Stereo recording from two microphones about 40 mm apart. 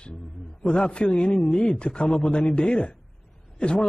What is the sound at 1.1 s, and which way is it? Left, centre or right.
Speech, left.